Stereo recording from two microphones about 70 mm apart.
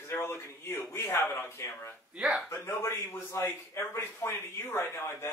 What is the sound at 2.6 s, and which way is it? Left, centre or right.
Speech, left.